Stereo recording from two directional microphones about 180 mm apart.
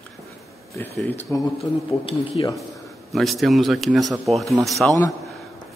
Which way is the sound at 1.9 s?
30° left (ahead or behind).